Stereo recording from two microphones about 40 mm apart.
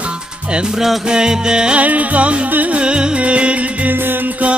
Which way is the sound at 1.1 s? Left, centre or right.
Centre.